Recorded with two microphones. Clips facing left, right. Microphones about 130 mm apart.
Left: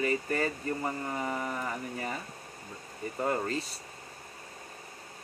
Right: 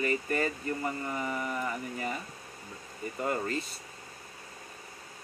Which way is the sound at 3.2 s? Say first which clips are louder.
Left 1 dB; 35° left (ahead or behind).